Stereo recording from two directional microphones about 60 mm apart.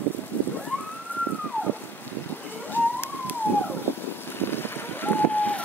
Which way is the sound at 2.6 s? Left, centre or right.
Left.